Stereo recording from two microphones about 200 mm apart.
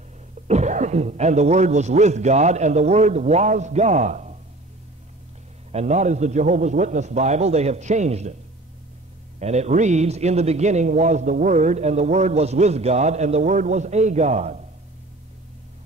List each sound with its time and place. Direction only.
0.5 s a man's voice: 35° right (ahead or behind)
5.7 s a man's voice: 35° right (ahead or behind)
9.4 s a man's voice: 35° right (ahead or behind)